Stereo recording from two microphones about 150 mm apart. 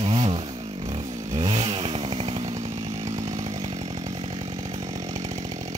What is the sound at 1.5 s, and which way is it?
Chainsaw, 40° right (ahead or behind).